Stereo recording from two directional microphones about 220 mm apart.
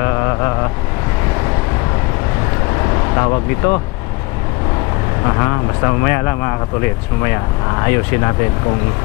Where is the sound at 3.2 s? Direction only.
15° left (ahead or behind).